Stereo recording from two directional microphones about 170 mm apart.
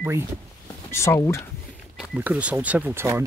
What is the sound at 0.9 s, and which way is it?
Speech, 15° left (ahead or behind).